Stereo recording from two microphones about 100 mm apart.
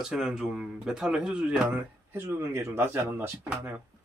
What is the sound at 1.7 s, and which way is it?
Speech, 25° right (ahead or behind).